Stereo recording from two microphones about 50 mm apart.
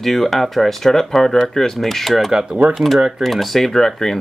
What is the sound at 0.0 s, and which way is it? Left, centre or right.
Speech, centre.